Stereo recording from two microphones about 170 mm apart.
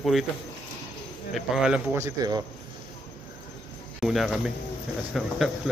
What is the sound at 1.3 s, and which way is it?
Speech, 5° right (ahead or behind).